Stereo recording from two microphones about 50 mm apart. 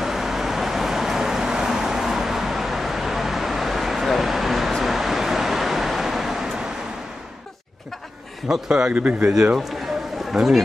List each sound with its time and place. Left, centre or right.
0.0 s vehicle: centre
8.5 s a man's voice: centre
8.9 s speech: right
10.3 s a man's voice: centre